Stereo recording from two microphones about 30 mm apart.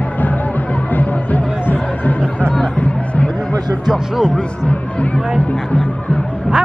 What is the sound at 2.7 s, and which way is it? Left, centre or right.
Chatter, left.